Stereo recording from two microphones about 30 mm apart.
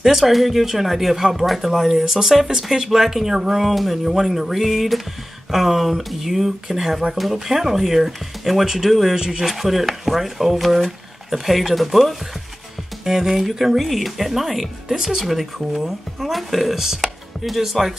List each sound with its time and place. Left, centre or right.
0.0 s speech: centre
1.4 s speech: centre
1.7 s speech: centre
3.7 s speech: centre
9.1 s speech: right
9.4 s speech: centre
13.0 s speech: centre